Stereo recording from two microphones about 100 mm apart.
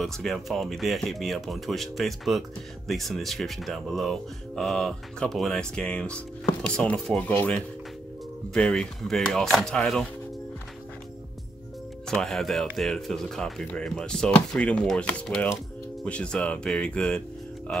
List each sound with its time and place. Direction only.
0.0 s speech: centre (ahead or behind)
12.1 s speech: 5° left (ahead or behind)